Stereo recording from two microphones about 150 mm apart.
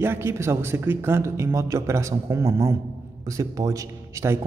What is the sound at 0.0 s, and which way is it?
A man's voice, 15° right (ahead or behind).